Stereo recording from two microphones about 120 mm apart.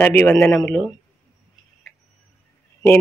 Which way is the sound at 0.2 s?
10° left (ahead or behind).